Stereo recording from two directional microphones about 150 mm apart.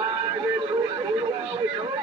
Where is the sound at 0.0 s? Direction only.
30° right (ahead or behind).